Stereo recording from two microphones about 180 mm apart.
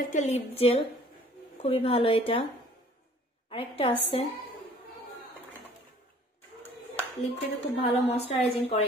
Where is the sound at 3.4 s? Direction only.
30° left (ahead or behind).